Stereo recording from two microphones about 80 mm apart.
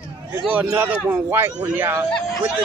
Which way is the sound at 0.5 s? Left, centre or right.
Right.